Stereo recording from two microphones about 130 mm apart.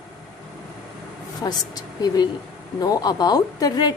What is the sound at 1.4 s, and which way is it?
A woman's voice, 30° left (ahead or behind).